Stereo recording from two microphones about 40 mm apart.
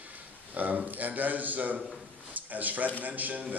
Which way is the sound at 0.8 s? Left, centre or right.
Right.